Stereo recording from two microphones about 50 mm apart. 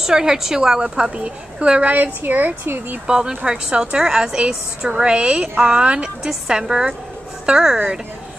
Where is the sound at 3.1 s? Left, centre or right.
Centre.